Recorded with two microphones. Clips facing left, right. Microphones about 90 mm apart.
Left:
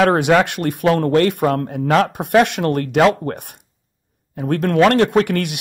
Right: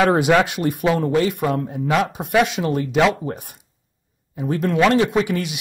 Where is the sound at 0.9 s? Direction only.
70° left (ahead or behind).